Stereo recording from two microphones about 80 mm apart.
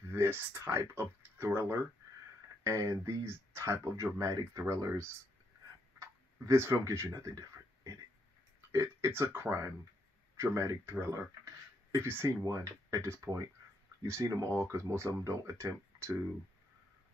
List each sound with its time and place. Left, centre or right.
0.1 s speech: right
5.9 s tick-tock: right
6.8 s speech: right
7.2 s a sound: right
8.5 s speech: right
12.4 s speech: right